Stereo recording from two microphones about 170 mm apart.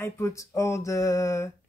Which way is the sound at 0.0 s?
20° left (ahead or behind).